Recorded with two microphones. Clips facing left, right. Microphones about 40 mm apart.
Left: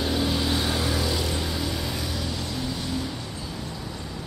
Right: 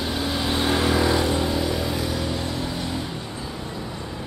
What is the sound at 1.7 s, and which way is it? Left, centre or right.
Music, centre.